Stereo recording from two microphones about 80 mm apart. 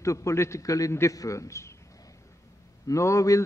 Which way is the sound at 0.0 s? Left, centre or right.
Left.